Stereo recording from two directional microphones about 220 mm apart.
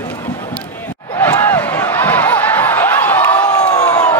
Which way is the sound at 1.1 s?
10° left (ahead or behind).